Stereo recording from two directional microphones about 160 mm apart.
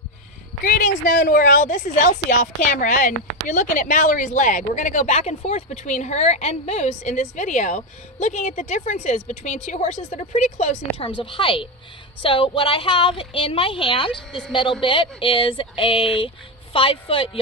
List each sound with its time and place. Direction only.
0.7 s a woman's voice: 55° left (ahead or behind)
11.1 s a woman's voice: 35° left (ahead or behind)
14.1 s a woman's voice: centre (ahead or behind)
14.5 s a woman's voice: 30° left (ahead or behind)